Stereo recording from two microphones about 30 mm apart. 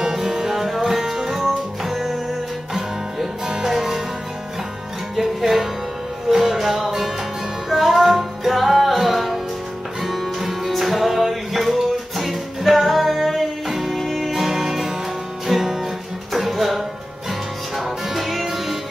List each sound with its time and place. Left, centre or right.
0.2 s music: centre
5.1 s music: centre